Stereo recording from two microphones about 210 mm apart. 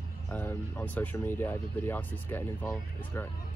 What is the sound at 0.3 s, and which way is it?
Speech, 10° left (ahead or behind).